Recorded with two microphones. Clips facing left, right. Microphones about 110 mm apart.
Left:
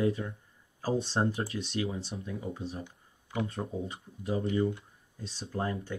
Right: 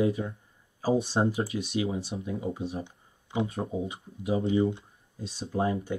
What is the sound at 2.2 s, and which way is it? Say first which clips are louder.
Speech: right 5 dB; 25° right (ahead or behind).